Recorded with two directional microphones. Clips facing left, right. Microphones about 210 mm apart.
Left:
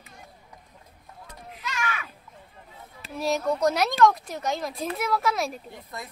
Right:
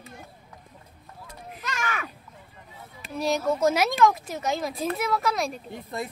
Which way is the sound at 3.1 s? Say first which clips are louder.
Right 1 dB; centre (ahead or behind).